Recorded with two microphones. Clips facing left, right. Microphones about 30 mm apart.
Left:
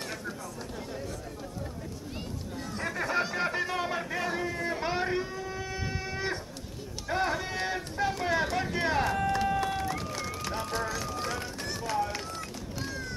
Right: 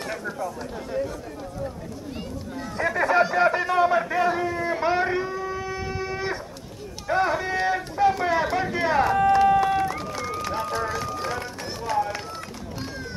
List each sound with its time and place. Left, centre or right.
2.8 s chatter: centre
3.2 s a sound: centre
9.6 s run: centre